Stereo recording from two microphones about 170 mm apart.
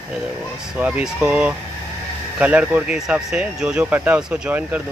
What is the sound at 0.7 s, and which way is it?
Speech, 10° right (ahead or behind).